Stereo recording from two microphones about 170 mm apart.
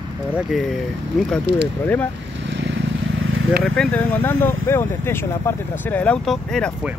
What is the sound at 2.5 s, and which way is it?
Vehicle, 90° right.